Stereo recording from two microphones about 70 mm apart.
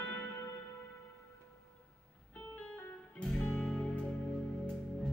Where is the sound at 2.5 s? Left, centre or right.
Centre.